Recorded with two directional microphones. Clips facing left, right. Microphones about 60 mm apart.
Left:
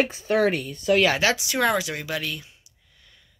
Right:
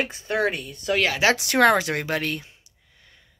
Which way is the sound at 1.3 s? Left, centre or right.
Right.